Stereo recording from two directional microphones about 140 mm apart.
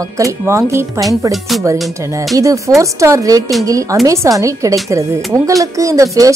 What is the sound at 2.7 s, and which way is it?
Speech, 20° right (ahead or behind).